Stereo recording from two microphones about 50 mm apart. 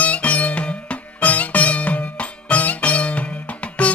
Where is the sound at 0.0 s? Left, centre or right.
Left.